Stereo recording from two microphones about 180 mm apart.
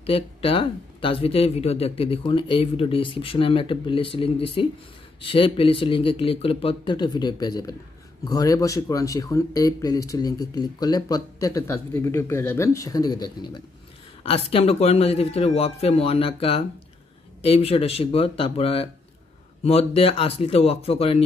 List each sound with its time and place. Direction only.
0.0 s speech: 30° left (ahead or behind)
14.5 s speech: 35° left (ahead or behind)